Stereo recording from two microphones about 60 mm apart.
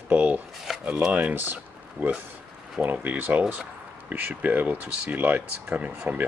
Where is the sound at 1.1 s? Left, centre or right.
Right.